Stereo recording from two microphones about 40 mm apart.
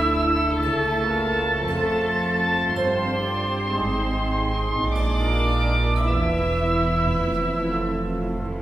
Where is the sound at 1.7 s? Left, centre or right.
Left.